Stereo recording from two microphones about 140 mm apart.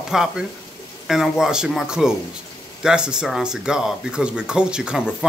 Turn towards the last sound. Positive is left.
turn(degrees=-5)  # may be behind; listen again after turning